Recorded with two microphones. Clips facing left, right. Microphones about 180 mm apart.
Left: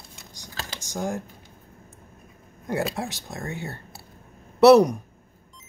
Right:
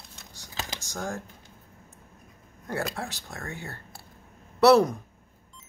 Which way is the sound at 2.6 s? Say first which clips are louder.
Left 5 dB; 15° left (ahead or behind).